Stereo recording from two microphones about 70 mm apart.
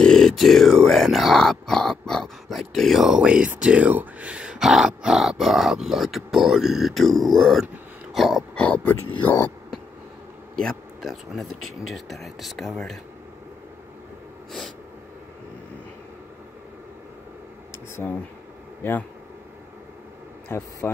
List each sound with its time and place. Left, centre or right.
0.0 s speech: centre
8.1 s a sound: centre
8.5 s speech: centre
11.0 s speech: centre
18.8 s speech: left
20.4 s speech: left